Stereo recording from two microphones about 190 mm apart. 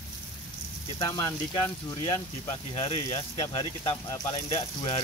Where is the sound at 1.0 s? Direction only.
20° left (ahead or behind).